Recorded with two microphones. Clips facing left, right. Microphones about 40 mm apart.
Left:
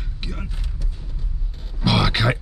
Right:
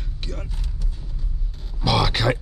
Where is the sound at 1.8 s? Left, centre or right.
Centre.